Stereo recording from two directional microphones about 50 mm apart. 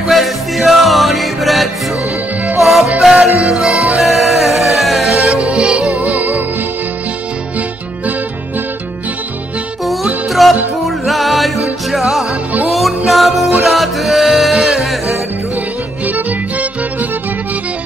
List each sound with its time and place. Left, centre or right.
0.1 s music: centre
5.5 s music: centre; by 6.4 s right
10.4 s music: centre